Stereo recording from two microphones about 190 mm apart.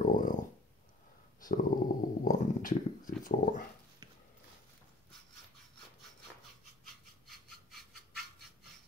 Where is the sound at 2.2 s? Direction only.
45° left (ahead or behind).